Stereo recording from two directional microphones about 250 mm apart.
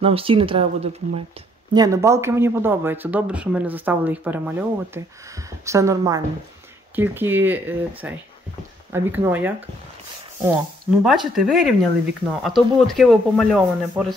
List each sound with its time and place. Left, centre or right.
0.0 s speech: right
11.0 s a man's voice: centre